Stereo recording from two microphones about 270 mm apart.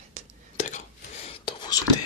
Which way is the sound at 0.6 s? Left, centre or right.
Left.